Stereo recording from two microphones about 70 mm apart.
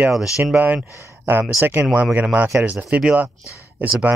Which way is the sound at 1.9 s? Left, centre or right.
Centre.